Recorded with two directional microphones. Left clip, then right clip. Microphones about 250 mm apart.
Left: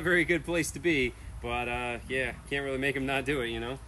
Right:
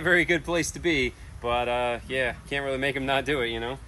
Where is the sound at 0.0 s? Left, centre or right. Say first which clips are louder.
Right 4 dB; centre.